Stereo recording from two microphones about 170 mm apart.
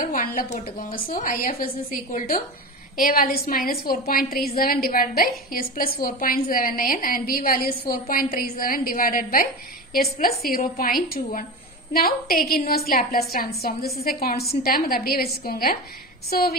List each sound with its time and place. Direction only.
0.0 s a woman's voice: 55° left (ahead or behind)
10.6 s a woman's voice: 55° left (ahead or behind)